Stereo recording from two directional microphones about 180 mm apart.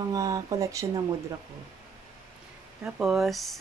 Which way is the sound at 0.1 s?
20° right (ahead or behind).